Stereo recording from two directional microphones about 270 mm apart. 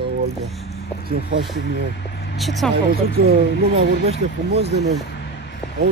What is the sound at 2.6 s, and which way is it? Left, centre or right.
Speech, centre.